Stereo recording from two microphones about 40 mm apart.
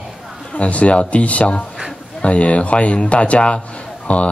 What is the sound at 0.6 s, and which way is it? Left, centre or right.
Speech, left.